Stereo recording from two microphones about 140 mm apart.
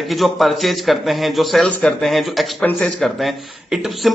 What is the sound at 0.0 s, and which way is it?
Speech, centre (ahead or behind).